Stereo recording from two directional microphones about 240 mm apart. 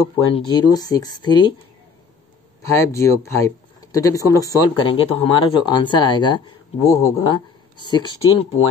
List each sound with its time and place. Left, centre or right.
0.5 s speech: centre
2.6 s speech: centre